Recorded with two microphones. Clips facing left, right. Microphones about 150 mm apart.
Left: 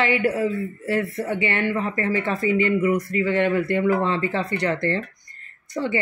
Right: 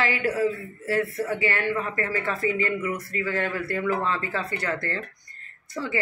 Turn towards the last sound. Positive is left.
turn(degrees=25)  # may be behind; listen again after turning